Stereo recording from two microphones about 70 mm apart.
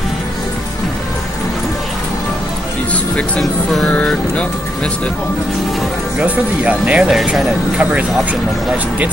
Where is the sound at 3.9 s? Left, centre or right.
Centre.